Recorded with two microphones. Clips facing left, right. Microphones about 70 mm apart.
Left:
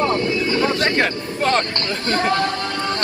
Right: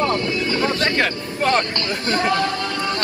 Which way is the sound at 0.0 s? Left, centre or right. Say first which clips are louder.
Left 1 dB; left.